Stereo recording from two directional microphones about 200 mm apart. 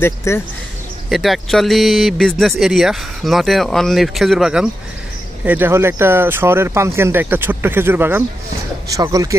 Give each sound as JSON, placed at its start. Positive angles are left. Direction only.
{"t": 0.0, "sound": "speech", "side_deg": 15}
{"t": 1.1, "sound": "speech", "side_deg": 0}